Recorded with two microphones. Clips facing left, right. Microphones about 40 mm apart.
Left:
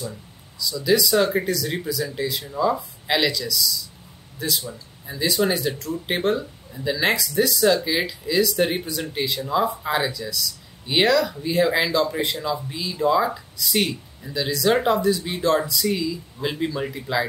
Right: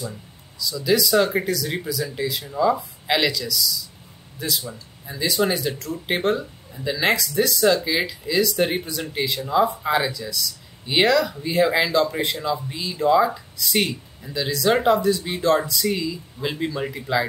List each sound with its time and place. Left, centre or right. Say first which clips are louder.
0.6 s speech: even; centre